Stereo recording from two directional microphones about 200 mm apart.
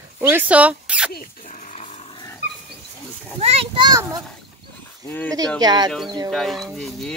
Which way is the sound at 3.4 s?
25° right (ahead or behind).